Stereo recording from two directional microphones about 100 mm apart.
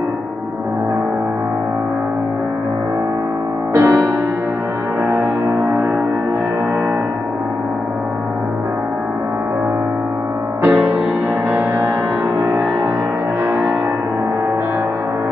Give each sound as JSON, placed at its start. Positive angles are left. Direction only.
{"t": 3.7, "sound": "music", "side_deg": -30}
{"t": 10.6, "sound": "music", "side_deg": -5}